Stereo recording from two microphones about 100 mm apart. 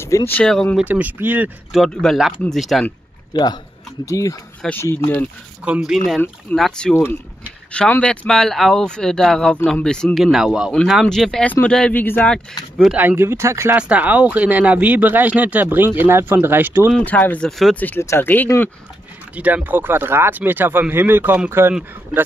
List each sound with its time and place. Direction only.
0.1 s speech: 30° left (ahead or behind)
0.8 s speech: 15° right (ahead or behind)
1.7 s speech: centre (ahead or behind)
3.3 s speech: 45° left (ahead or behind)
4.7 s speech: 25° left (ahead or behind)
5.7 s speech: 5° right (ahead or behind)
8.0 s speech: 10° left (ahead or behind)
12.9 s speech: 20° right (ahead or behind)
13.7 s speech: 15° right (ahead or behind)
17.0 s speech: 15° left (ahead or behind)
17.5 s speech: 5° left (ahead or behind)
17.7 s speech: 20° left (ahead or behind)
19.3 s speech: 15° right (ahead or behind)